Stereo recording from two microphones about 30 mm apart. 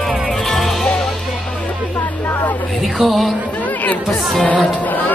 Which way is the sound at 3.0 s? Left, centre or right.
Centre.